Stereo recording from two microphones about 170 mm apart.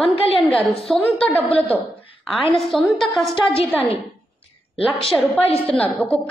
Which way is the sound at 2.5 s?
Centre (ahead or behind).